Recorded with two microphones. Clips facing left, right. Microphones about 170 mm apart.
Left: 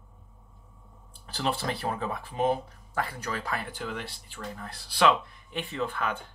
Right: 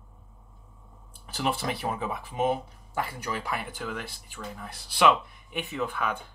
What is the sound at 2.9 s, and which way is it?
Speech, 20° right (ahead or behind).